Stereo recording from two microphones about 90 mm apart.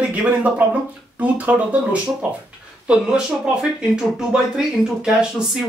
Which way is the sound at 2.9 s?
10° right (ahead or behind).